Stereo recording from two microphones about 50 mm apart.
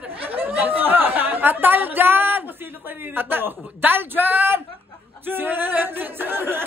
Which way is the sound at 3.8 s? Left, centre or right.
Right.